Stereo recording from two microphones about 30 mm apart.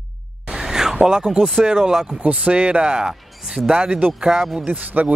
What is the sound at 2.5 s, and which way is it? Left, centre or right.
Speech, right.